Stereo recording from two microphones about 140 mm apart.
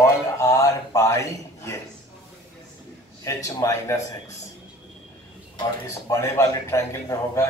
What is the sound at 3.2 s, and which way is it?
A man's voice, 25° left (ahead or behind).